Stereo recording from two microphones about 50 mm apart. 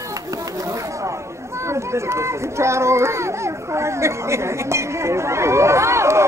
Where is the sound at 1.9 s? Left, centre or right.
Right.